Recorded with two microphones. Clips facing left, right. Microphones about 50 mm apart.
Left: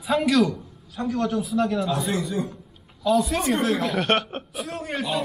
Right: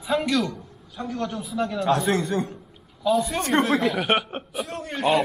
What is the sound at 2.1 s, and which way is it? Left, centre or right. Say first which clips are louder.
Speech: right 2 dB; right.